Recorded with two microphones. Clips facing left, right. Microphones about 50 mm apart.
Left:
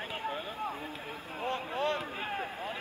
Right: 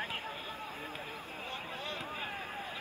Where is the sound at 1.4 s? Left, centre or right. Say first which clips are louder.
Left 11 dB; left.